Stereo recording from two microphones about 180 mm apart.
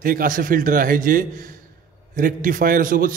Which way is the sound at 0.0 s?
50° right (ahead or behind).